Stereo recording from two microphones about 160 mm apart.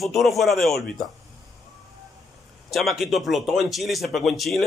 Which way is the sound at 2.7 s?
Centre (ahead or behind).